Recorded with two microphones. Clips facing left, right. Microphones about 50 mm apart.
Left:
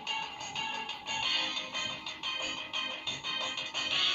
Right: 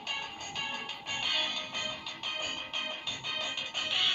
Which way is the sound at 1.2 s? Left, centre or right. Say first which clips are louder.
Right 1 dB; right.